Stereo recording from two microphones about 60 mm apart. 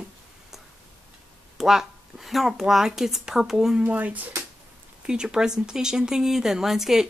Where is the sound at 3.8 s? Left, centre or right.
Right.